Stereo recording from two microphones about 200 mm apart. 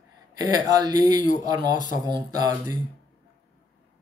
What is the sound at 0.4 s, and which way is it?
Speech, 20° right (ahead or behind).